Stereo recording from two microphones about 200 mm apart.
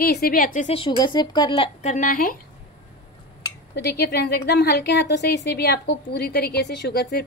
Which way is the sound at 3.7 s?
55° left (ahead or behind).